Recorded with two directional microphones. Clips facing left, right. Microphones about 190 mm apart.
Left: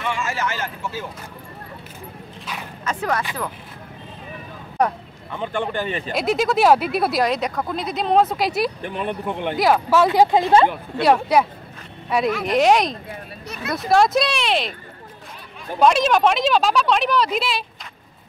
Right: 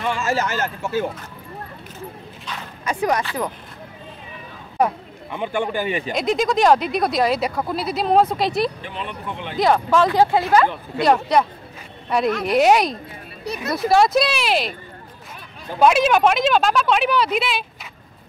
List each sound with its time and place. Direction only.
0.0 s speech: 35° right (ahead or behind)
2.8 s speech: 15° right (ahead or behind)
5.3 s a man's voice: 10° right (ahead or behind)
6.1 s speech: 5° left (ahead or behind)
8.8 s speech: 50° left (ahead or behind)
9.6 s speech: 5° left (ahead or behind)
10.0 s speech: 15° left (ahead or behind)
10.7 s speech: 5° left (ahead or behind)
15.8 s speech: 5° right (ahead or behind)